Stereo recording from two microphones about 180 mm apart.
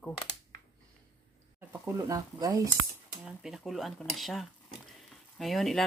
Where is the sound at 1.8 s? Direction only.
15° right (ahead or behind).